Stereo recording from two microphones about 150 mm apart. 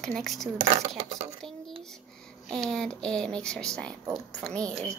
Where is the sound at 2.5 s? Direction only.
5° left (ahead or behind).